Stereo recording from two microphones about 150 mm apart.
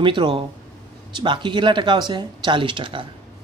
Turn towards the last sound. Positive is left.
turn(degrees=-35)  # may be behind; listen again after turning